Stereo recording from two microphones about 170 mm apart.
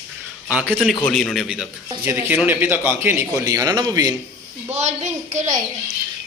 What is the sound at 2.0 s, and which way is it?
A man's voice, 15° right (ahead or behind).